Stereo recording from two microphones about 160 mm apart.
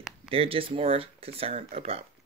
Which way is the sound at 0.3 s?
35° right (ahead or behind).